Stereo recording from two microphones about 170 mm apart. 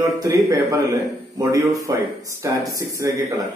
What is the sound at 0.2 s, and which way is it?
A man's voice, 20° right (ahead or behind).